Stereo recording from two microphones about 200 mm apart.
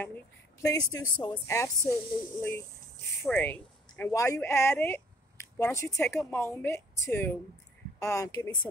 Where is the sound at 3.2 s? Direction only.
10° left (ahead or behind).